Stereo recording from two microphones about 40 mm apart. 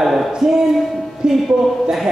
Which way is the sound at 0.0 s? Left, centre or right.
Centre.